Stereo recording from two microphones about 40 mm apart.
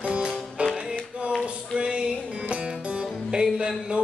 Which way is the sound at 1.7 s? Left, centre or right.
Right.